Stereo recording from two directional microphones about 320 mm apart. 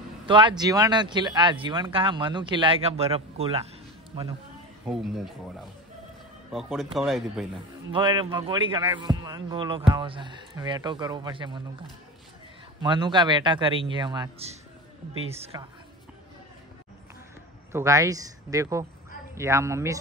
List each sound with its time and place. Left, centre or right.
0.3 s speech: centre
4.8 s speech: centre
6.5 s speech: centre
7.9 s speech: centre
12.8 s a woman's voice: centre
17.7 s speech: centre